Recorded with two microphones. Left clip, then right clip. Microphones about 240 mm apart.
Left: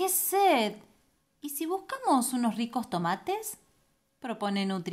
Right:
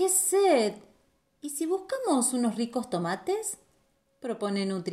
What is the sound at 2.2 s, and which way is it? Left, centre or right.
A woman's voice, left.